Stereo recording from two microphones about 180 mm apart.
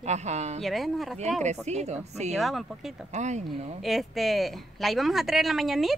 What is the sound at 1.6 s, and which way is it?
Speech, 40° right (ahead or behind).